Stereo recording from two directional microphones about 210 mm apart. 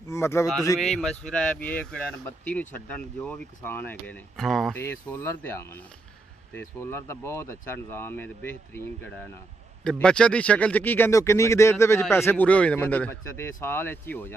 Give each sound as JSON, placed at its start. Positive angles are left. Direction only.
{"t": 0.1, "sound": "speech", "side_deg": 15}
{"t": 0.7, "sound": "speech", "side_deg": 0}